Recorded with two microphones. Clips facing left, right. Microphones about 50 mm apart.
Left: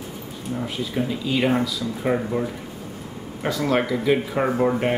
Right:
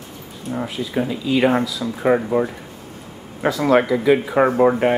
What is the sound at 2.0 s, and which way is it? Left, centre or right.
Speech, right.